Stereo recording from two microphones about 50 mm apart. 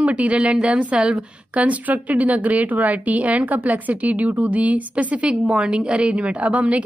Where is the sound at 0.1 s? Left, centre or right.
Right.